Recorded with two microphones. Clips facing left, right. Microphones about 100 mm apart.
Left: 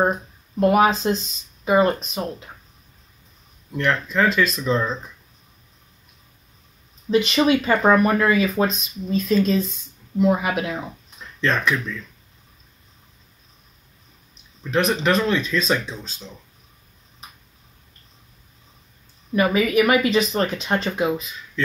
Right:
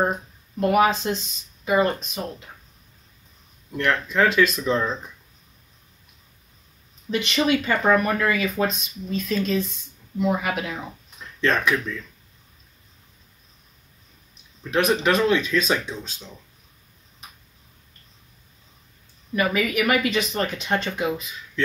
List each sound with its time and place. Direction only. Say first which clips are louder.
0.6 s speech: left 2 dB; 25° left (ahead or behind)
3.7 s speech: left 1 dB; centre (ahead or behind)
7.1 s speech: left 4 dB; 25° left (ahead or behind)
11.4 s speech: even; 5° right (ahead or behind)
14.7 s speech: left 1 dB; 5° right (ahead or behind)
19.3 s speech: left 5 dB; 25° left (ahead or behind)